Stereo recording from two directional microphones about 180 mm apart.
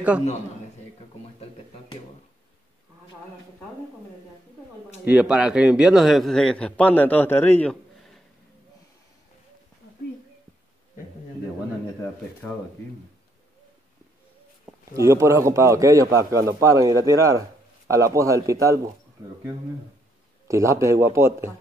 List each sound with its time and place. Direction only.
5.0 s a man's voice: 5° right (ahead or behind); by 7.7 s 10° left (ahead or behind)
14.7 s a man's voice: 15° right (ahead or behind)
20.4 s a man's voice: 15° right (ahead or behind)